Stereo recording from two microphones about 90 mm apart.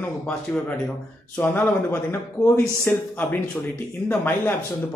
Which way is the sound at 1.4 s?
20° left (ahead or behind).